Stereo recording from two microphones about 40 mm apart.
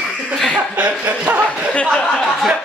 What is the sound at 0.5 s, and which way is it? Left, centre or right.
Speech, right.